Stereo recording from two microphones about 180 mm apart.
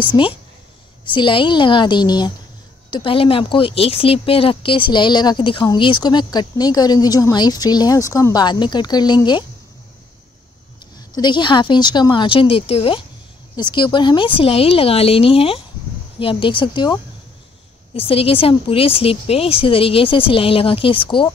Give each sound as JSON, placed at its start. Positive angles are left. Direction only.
{"t": 0.0, "sound": "speech", "side_deg": 30}
{"t": 11.1, "sound": "a woman's voice", "side_deg": 25}